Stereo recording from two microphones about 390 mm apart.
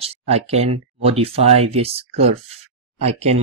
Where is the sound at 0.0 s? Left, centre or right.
Centre.